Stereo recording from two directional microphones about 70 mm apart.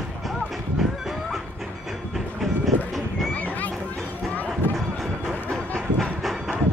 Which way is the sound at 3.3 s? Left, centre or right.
Left.